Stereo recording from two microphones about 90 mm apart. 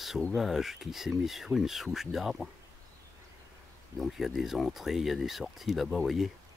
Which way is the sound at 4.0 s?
Centre (ahead or behind).